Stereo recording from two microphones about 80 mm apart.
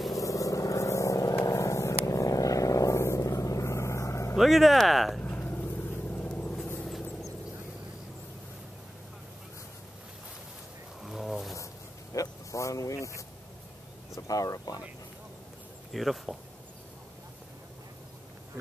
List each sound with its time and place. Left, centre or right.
0.1 s vehicle: left
4.4 s speech: centre
5.2 s vehicle: left
6.9 s vehicle: centre
11.0 s a sound: centre
11.5 s vehicle: left
14.1 s speech: left
15.9 s speech: centre